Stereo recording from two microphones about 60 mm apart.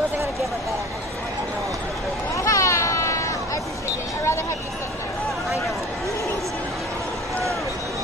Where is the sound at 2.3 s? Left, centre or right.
Left.